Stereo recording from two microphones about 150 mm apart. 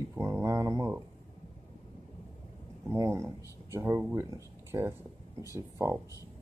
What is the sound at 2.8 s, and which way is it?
Speech, 20° right (ahead or behind).